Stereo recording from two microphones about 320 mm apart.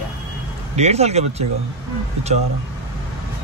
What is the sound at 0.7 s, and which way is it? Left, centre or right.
Speech, centre.